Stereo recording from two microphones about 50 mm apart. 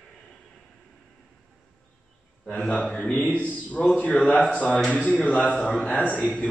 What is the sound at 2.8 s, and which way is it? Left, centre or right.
Mantra, centre.